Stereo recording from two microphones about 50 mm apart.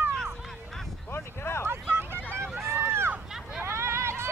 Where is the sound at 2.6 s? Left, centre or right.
Right.